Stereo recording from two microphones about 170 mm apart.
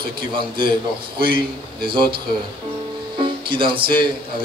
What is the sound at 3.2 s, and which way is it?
Speech, 30° right (ahead or behind).